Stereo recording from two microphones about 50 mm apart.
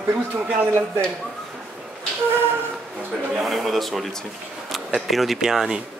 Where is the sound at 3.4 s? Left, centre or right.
Centre.